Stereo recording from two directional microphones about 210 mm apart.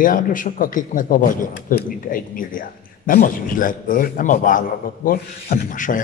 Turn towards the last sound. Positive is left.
turn(degrees=40)  # may be behind; listen again after turning